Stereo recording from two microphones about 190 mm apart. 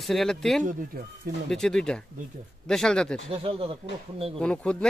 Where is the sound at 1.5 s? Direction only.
5° left (ahead or behind).